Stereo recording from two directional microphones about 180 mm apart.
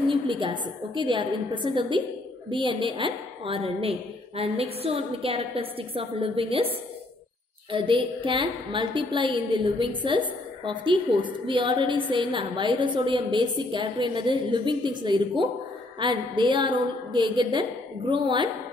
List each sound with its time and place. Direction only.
0.3 s a woman's voice: 25° right (ahead or behind)
7.7 s a woman's voice: 30° right (ahead or behind)